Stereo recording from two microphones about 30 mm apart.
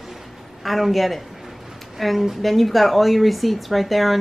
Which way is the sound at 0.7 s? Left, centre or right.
Centre.